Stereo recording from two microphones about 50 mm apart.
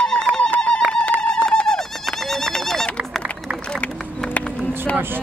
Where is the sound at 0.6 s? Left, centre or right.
Centre.